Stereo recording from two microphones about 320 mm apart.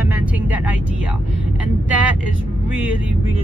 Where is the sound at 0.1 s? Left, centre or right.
Centre.